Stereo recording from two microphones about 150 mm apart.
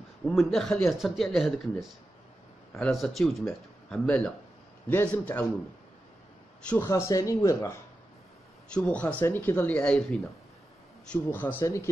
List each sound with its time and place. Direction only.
0.2 s speech: centre (ahead or behind)
6.7 s speech: 15° left (ahead or behind)
8.7 s speech: 10° left (ahead or behind)